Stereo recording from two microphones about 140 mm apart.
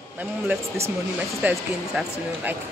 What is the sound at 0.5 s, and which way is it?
Speech, 20° right (ahead or behind).